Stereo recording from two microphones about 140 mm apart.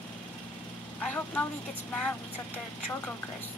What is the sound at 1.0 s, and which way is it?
Vehicle, 10° left (ahead or behind).